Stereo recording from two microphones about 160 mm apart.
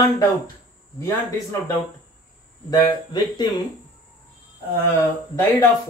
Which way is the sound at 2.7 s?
25° left (ahead or behind).